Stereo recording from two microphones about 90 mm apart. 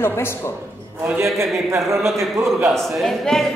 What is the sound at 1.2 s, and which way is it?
A man's voice, 30° right (ahead or behind).